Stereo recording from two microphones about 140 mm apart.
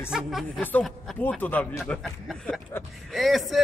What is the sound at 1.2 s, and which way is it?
Speech, 15° left (ahead or behind).